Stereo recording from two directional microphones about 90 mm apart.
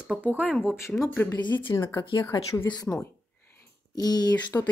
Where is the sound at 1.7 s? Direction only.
40° left (ahead or behind).